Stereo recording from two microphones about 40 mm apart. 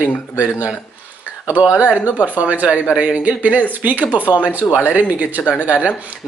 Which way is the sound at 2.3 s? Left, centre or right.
Right.